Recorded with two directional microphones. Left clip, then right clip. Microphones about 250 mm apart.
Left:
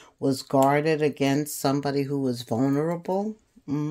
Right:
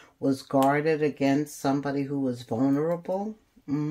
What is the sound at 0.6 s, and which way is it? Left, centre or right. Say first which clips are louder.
Speech: left 1 dB; left.